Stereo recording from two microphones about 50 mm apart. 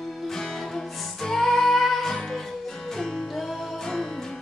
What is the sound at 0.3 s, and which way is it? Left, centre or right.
Music, centre.